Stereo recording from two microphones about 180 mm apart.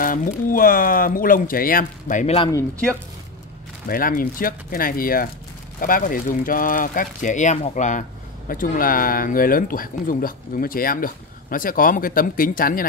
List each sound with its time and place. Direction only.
0.0 s speech: 50° left (ahead or behind)
3.8 s speech: 55° left (ahead or behind)